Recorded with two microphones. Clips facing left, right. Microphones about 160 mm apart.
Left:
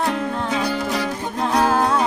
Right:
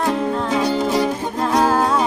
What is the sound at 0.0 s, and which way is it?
Music, 20° right (ahead or behind).